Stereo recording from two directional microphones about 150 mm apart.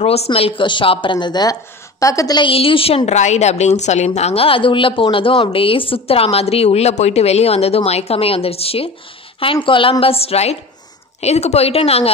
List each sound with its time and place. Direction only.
0.0 s a woman's voice: 45° left (ahead or behind)